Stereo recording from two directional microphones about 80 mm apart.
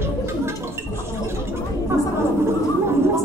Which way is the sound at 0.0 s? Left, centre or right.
Right.